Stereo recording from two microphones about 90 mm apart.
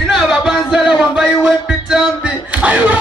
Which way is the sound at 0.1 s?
5° right (ahead or behind).